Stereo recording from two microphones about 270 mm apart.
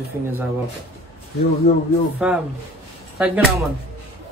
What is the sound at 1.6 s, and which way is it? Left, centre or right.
Speech, left.